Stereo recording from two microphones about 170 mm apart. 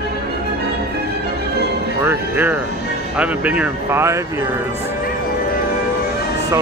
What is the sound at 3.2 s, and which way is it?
Speech, 10° right (ahead or behind).